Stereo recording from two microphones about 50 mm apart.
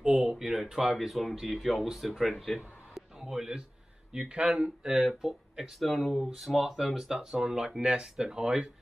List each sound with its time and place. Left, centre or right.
0.0 s a sound: centre
0.9 s speech: centre
5.8 s speech: centre
6.3 s speech: centre